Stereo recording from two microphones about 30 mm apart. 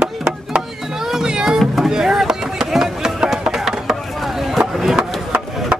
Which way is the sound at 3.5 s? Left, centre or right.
Centre.